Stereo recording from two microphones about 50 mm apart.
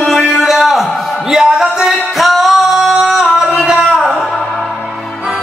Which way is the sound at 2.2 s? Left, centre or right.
Centre.